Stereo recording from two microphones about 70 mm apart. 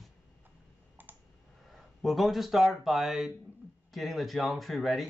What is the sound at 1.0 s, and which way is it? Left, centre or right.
Computer keyboard, right.